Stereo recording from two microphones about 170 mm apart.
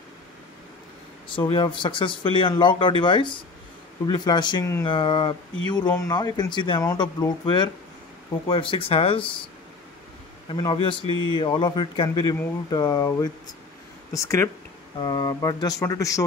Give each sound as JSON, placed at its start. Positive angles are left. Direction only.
{"t": 1.5, "sound": "speech", "side_deg": 30}
{"t": 10.5, "sound": "speech", "side_deg": 30}